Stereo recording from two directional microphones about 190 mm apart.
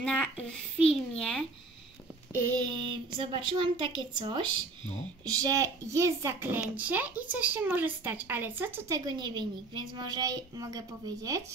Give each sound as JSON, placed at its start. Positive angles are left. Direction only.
{"t": 0.0, "sound": "a child's voice", "side_deg": 5}
{"t": 2.5, "sound": "speech", "side_deg": -25}